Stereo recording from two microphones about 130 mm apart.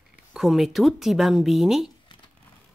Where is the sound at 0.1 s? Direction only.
5° right (ahead or behind).